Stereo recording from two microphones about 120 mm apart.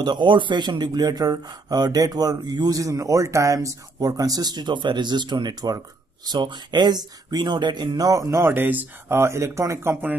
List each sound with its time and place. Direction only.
0.0 s speech: 40° right (ahead or behind); by 10.1 s 20° right (ahead or behind)